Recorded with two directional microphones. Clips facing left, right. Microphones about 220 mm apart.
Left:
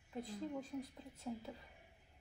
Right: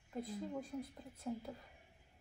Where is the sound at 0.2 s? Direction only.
Centre (ahead or behind).